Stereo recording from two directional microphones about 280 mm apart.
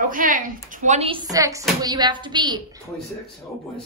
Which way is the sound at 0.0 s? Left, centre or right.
Right.